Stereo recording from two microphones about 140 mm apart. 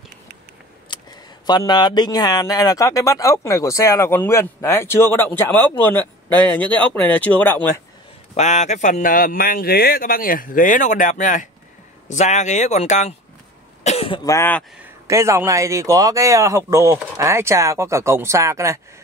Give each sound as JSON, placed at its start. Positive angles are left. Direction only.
{"t": 0.9, "sound": "a sound", "side_deg": 35}
{"t": 1.4, "sound": "a man's voice", "side_deg": 30}
{"t": 8.4, "sound": "speech", "side_deg": 55}
{"t": 13.8, "sound": "cough", "side_deg": 45}
{"t": 14.2, "sound": "a man's voice", "side_deg": 20}
{"t": 15.0, "sound": "speech", "side_deg": -20}